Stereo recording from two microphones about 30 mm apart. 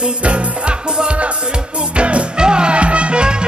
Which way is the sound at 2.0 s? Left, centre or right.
Right.